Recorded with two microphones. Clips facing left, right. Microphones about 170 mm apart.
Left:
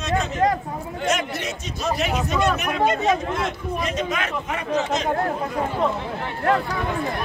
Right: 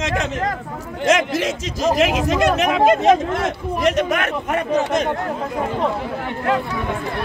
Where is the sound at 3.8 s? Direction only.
75° right (ahead or behind).